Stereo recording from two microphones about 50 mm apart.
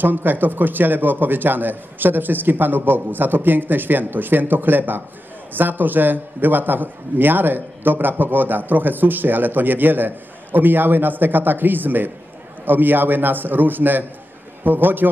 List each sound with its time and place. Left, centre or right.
0.0 s a man's voice: right